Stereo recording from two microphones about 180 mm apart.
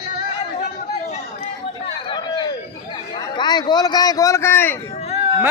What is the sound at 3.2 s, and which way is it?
A man's voice, 25° left (ahead or behind).